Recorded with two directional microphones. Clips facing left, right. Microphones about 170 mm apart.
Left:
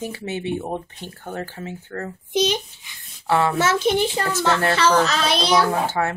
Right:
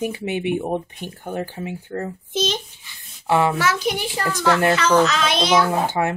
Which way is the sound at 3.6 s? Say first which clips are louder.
Left 3 dB; 25° left (ahead or behind).